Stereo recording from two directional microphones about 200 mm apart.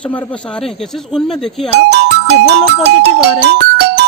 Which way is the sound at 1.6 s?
55° right (ahead or behind).